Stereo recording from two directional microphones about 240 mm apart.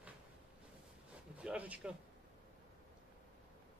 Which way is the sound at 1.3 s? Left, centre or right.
Centre.